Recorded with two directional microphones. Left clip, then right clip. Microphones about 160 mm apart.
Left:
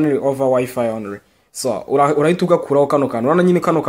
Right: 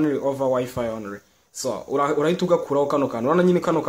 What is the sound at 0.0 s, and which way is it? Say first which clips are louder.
Speech: left 6 dB; 15° left (ahead or behind).